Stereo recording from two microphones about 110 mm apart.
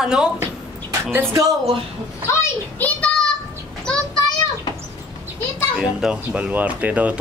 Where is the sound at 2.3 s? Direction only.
25° left (ahead or behind).